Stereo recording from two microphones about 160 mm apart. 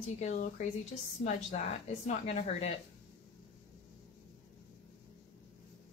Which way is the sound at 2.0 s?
45° left (ahead or behind).